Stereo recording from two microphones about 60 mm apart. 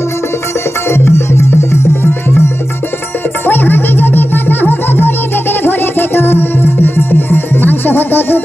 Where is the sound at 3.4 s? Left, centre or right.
Left.